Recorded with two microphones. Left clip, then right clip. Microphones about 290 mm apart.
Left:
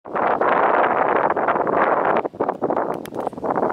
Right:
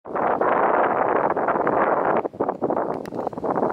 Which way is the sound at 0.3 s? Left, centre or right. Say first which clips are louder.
Left 2 dB; centre.